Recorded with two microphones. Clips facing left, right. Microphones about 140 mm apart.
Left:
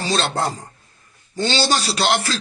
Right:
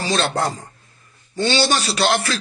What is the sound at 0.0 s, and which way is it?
Speech, 30° left (ahead or behind).